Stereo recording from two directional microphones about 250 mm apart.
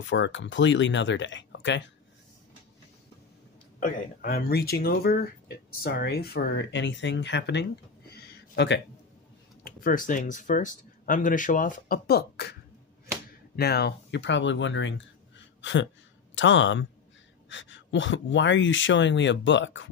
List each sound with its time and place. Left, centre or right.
0.0 s speech: left
3.8 s speech: left
8.1 s a sound: left
9.7 s speech: left
13.6 s speech: left